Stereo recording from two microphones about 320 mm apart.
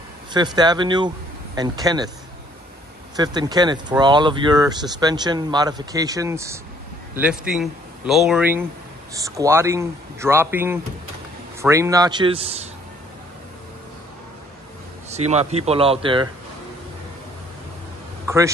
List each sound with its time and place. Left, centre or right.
0.3 s speech: centre
3.2 s a man's voice: centre
15.0 s a man's voice: centre
18.2 s a sound: centre